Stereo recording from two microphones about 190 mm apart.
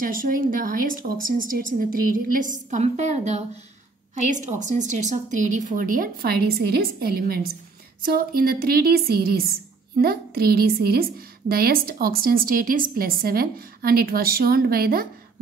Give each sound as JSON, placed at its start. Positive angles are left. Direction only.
{"t": 0.0, "sound": "a woman's voice", "side_deg": -45}